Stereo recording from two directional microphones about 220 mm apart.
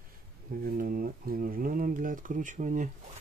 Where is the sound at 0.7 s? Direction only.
40° right (ahead or behind).